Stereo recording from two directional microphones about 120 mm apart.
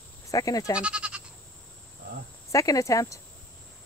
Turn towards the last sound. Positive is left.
turn(degrees=25)  # may be behind; listen again after turning